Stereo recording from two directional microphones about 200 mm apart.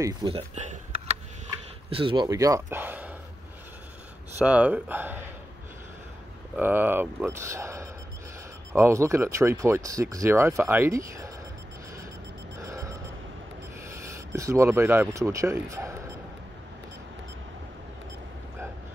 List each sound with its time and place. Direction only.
0.0 s speech: 25° right (ahead or behind)
4.4 s speech: 5° right (ahead or behind)
6.5 s speech: 10° right (ahead or behind)
12.6 s a sound: 15° right (ahead or behind)
14.3 s speech: 15° right (ahead or behind)